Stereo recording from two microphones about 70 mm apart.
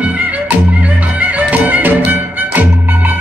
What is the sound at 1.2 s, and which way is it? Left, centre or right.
Music, right.